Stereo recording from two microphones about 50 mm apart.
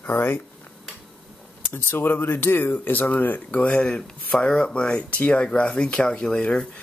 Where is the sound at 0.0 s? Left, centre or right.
Left.